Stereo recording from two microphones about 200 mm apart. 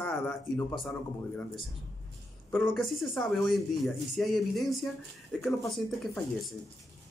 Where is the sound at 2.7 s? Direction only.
Centre (ahead or behind).